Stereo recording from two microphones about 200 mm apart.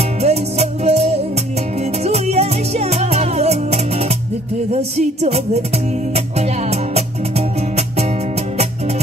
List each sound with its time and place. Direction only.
0.2 s music: 30° right (ahead or behind)